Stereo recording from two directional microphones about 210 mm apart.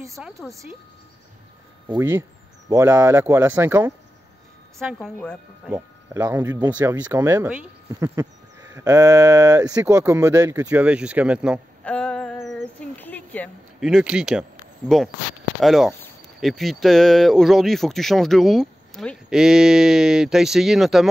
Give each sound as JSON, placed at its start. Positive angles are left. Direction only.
{"t": 0.1, "sound": "speech", "side_deg": 0}
{"t": 1.9, "sound": "speech", "side_deg": -10}
{"t": 4.9, "sound": "speech", "side_deg": 5}
{"t": 5.7, "sound": "speech", "side_deg": -10}
{"t": 11.8, "sound": "female singing", "side_deg": 5}
{"t": 12.9, "sound": "a sound", "side_deg": 10}
{"t": 13.8, "sound": "speech", "side_deg": -5}
{"t": 15.6, "sound": "speech", "side_deg": 0}